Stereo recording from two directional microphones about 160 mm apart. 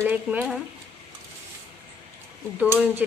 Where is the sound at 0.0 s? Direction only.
10° right (ahead or behind).